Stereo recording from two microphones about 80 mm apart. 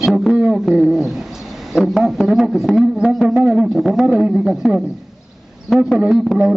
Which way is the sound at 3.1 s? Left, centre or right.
Centre.